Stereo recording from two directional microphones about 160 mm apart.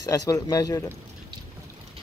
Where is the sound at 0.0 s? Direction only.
20° left (ahead or behind).